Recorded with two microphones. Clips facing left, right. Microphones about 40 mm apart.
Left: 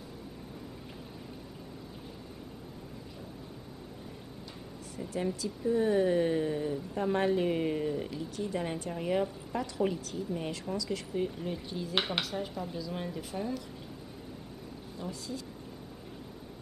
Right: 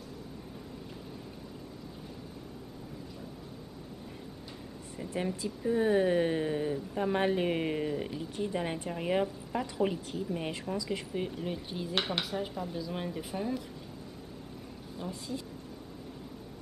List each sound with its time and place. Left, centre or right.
4.9 s speech: right
11.9 s speech: centre
12.3 s speech: centre
15.0 s speech: right